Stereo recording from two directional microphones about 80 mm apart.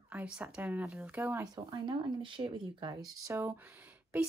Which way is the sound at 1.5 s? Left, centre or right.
Right.